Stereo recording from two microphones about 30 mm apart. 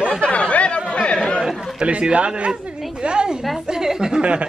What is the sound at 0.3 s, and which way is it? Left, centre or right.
Chatter, left.